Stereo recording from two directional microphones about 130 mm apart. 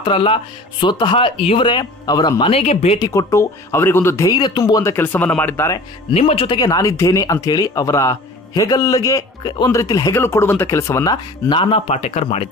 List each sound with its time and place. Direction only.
0.0 s speech: 45° left (ahead or behind)
2.5 s speech: 55° left (ahead or behind)
3.0 s a man's voice: 25° left (ahead or behind)
4.8 s speech: 15° left (ahead or behind)
6.1 s a man's voice: 45° left (ahead or behind); by 11.1 s 20° left (ahead or behind)
11.4 s a man's voice: 40° left (ahead or behind)